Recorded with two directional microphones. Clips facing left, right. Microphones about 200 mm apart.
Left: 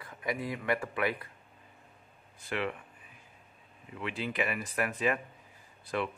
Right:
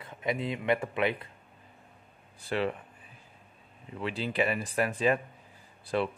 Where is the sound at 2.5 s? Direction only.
35° right (ahead or behind).